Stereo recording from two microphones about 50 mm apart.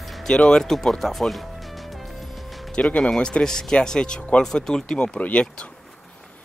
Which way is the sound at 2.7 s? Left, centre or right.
Left.